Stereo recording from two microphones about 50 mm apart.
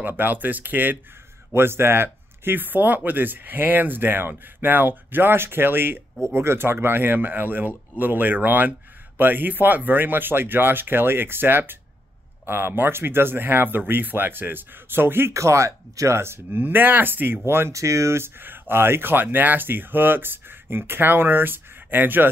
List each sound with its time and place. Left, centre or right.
0.0 s speech: right
1.5 s speech: right
15.3 s speech: right
16.5 s speech: right
17.7 s speech: right
18.2 s speech: right
19.2 s speech: right